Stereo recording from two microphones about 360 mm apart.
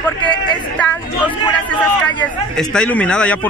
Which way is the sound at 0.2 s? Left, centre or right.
Centre.